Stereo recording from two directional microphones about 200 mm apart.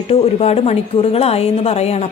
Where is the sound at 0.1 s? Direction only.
30° left (ahead or behind).